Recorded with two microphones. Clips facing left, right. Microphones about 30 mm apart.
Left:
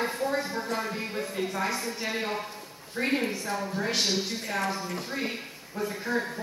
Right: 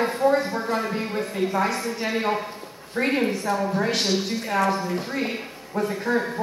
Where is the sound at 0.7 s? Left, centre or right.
Centre.